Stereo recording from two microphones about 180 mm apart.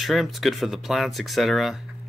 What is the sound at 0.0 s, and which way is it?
Speech, centre (ahead or behind).